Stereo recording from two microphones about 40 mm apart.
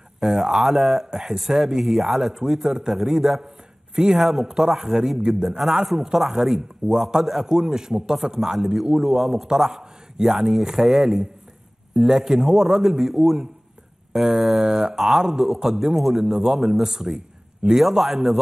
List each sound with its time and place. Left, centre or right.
0.2 s a man's voice: centre